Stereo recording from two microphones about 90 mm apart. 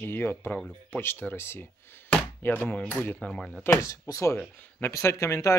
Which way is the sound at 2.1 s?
20° left (ahead or behind).